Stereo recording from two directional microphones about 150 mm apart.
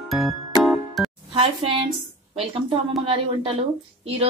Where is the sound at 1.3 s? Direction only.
35° right (ahead or behind).